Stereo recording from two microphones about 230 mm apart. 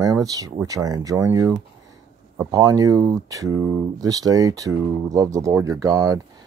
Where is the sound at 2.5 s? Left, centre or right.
Centre.